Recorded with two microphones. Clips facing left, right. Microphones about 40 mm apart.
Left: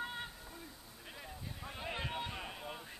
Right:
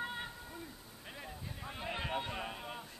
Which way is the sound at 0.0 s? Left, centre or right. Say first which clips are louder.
Right 2 dB; centre.